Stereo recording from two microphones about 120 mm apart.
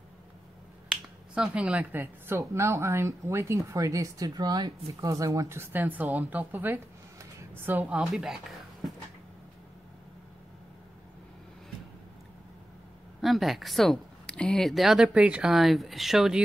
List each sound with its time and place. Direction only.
0.8 s speech: 5° right (ahead or behind)
13.2 s a woman's voice: centre (ahead or behind)